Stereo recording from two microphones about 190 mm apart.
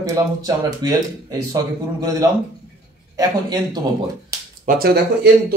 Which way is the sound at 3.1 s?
20° right (ahead or behind).